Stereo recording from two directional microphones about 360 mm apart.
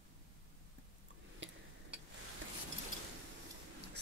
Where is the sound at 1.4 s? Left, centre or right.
Right.